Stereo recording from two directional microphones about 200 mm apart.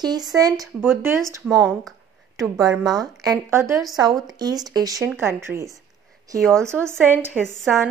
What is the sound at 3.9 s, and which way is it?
Speech, 20° right (ahead or behind).